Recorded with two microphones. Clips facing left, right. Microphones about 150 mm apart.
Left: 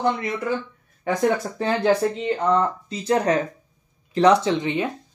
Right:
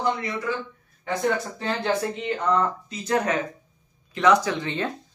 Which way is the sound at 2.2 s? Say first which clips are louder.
Left 2 dB; 30° left (ahead or behind).